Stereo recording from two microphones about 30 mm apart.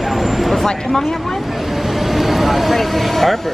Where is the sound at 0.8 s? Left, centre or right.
Centre.